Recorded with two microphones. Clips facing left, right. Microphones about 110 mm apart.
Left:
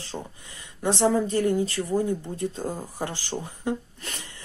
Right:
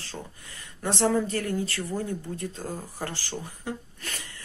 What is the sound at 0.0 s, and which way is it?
Speech, 20° left (ahead or behind).